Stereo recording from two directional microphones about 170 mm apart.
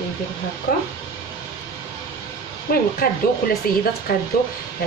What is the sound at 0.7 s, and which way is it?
Speech, 60° left (ahead or behind).